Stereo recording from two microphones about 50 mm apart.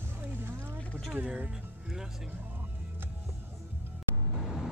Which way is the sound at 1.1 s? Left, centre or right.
Right.